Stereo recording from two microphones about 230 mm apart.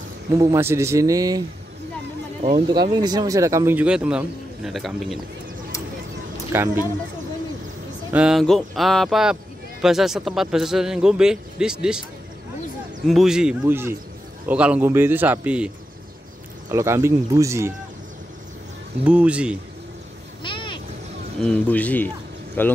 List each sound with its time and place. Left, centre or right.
0.3 s speech: centre
2.4 s speech: centre
6.5 s speech: centre
8.1 s speech: centre
13.0 s speech: centre
16.7 s speech: centre
19.0 s speech: centre
20.4 s a sound: left
21.4 s speech: centre